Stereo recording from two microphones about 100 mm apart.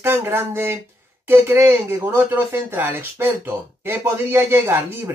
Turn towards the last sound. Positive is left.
turn(degrees=-25)  # may be behind; listen again after turning